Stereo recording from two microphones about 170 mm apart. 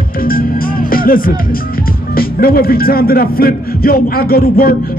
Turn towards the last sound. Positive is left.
turn(degrees=60)  # may be behind; listen again after turning